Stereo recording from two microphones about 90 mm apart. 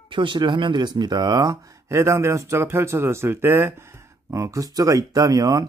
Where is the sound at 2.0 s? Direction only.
30° right (ahead or behind).